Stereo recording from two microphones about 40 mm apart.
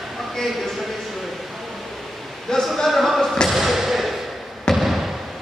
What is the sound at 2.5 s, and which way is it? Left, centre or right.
Speech, centre.